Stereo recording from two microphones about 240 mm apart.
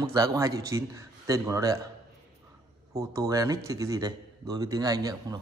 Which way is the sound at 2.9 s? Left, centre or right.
Centre.